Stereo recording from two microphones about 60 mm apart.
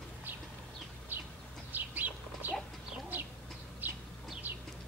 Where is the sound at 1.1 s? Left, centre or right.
Right.